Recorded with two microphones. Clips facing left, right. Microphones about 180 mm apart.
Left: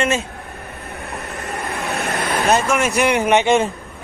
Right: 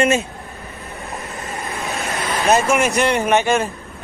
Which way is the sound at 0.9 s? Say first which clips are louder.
Left 1 dB; 60° left (ahead or behind).